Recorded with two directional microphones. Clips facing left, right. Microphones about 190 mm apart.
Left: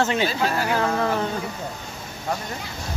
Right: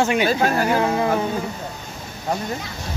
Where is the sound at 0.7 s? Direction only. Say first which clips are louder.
Right 3 dB; 15° right (ahead or behind).